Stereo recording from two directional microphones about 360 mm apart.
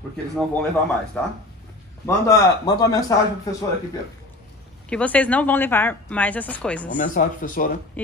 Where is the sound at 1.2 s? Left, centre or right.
Centre.